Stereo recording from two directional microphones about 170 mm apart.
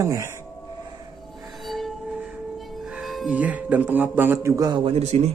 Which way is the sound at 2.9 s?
5° right (ahead or behind).